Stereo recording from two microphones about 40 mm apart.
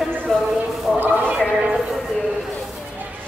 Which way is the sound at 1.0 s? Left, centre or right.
Right.